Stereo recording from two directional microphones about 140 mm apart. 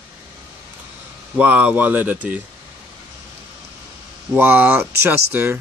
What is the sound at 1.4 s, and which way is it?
Speech, 10° right (ahead or behind).